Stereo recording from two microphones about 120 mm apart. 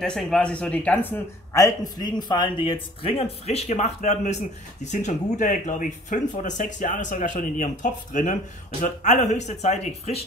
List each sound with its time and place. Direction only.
0.0 s a man's voice: 5° left (ahead or behind); by 10.2 s 65° left (ahead or behind)